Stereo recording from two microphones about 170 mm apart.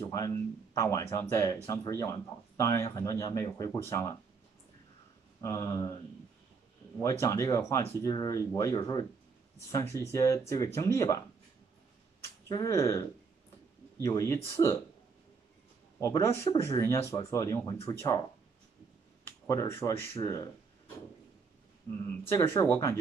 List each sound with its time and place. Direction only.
0.0 s a sound: 15° left (ahead or behind)
0.7 s speech: 20° left (ahead or behind)
5.4 s speech: 20° left (ahead or behind)
7.0 s speech: 15° left (ahead or behind)
12.4 s speech: 20° left (ahead or behind)
14.0 s speech: 20° left (ahead or behind)
16.0 s speech: 15° left (ahead or behind)
19.2 s speech: 20° left (ahead or behind)
22.3 s speech: 15° left (ahead or behind)